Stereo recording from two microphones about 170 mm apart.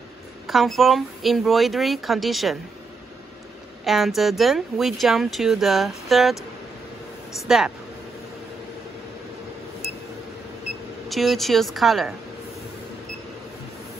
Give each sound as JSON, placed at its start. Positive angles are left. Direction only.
{"t": 0.5, "sound": "speech", "side_deg": 0}
{"t": 3.8, "sound": "speech", "side_deg": 0}
{"t": 7.3, "sound": "speech", "side_deg": 0}
{"t": 11.1, "sound": "speech", "side_deg": 0}